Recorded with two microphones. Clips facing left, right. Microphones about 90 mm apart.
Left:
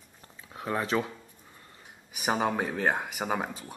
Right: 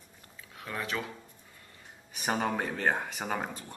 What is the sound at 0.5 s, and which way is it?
Speech, 30° left (ahead or behind).